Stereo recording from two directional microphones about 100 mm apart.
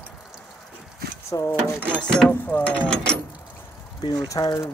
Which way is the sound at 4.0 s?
35° left (ahead or behind).